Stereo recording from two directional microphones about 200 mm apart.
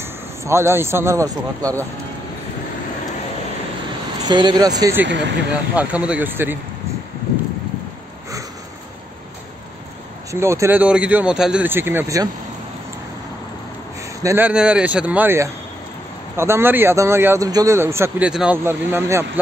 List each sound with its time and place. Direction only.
0.0 s speech: 15° right (ahead or behind)
4.3 s speech: 20° right (ahead or behind)
5.0 s speech: 60° right (ahead or behind)
5.5 s speech: 5° right (ahead or behind)
10.3 s speech: 15° right (ahead or behind)
14.2 s speech: 10° right (ahead or behind)